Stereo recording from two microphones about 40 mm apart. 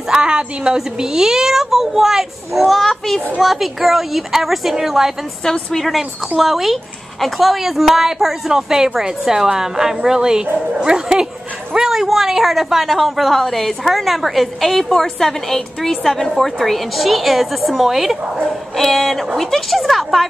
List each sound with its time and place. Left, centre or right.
0.1 s a woman's voice: right
5.4 s a woman's voice: centre
5.9 s a woman's voice: centre